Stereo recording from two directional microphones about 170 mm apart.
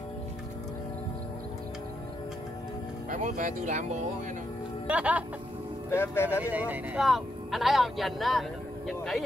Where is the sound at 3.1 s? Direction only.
50° right (ahead or behind).